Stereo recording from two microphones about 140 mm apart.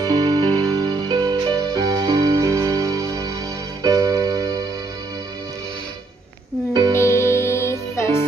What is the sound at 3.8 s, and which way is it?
Keyboard, 25° right (ahead or behind).